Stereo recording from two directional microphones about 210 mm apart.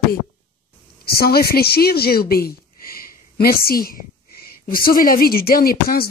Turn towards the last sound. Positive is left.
turn(degrees=45)  # may be behind; listen again after turning